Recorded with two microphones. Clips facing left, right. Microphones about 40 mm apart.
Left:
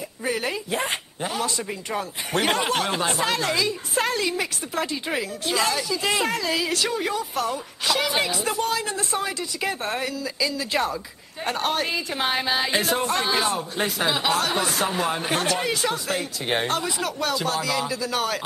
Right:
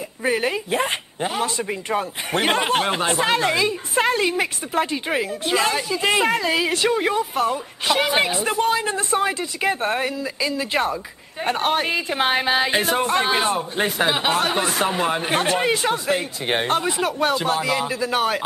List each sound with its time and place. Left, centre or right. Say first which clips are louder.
0.2 s speech: right 5 dB; right